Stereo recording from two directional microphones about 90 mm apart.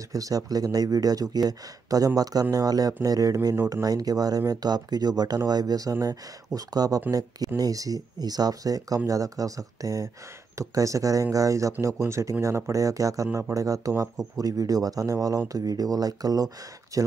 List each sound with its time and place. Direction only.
0.1 s speech: 40° right (ahead or behind)